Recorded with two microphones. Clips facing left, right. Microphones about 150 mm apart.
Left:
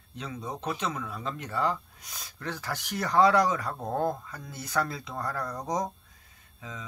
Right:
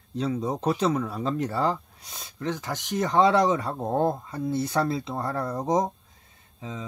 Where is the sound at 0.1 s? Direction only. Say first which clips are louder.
Right 10 dB; 35° right (ahead or behind).